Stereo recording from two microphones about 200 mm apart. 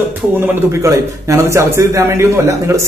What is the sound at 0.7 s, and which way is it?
A man's voice, 15° right (ahead or behind).